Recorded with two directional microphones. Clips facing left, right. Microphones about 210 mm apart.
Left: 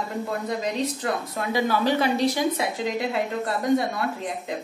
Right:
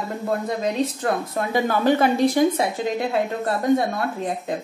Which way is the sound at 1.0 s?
50° right (ahead or behind).